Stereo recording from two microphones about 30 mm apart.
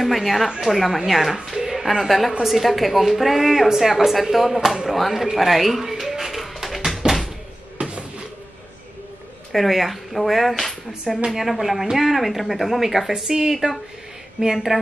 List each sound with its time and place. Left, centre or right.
0.0 s speech: centre
1.5 s a sound: centre
2.0 s a woman's voice: centre
6.3 s music: centre
7.0 s door: right
9.5 s speech: centre
13.3 s a woman's voice: centre